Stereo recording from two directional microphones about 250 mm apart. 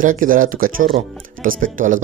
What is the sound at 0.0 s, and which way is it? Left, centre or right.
Speech, right.